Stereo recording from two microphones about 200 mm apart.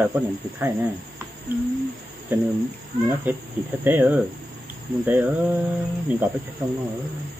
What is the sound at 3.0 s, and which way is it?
Speech, 10° right (ahead or behind).